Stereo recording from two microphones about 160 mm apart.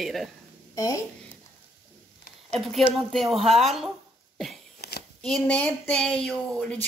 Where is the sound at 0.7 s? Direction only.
20° left (ahead or behind).